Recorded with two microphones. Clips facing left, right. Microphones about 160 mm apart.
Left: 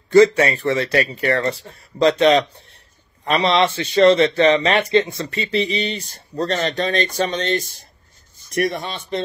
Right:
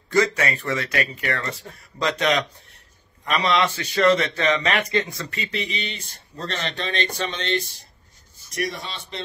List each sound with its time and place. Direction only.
0.1 s speech: 30° left (ahead or behind)
8.5 s speech: 55° left (ahead or behind)